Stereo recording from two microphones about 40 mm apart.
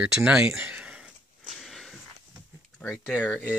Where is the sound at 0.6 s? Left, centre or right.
Right.